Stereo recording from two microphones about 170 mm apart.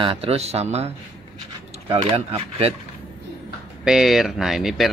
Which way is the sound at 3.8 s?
Centre (ahead or behind).